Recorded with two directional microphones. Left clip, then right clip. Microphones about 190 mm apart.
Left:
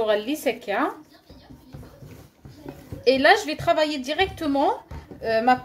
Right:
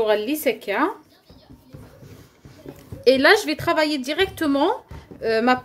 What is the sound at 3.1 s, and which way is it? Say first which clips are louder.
A woman's voice: right 2 dB; 50° right (ahead or behind).